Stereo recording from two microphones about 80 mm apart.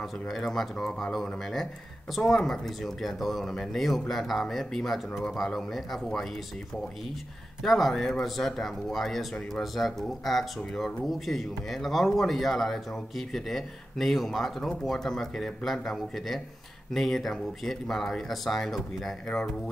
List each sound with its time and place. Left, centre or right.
0.3 s speech: centre
7.6 s speech: centre